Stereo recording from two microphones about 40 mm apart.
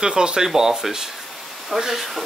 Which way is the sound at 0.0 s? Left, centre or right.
Right.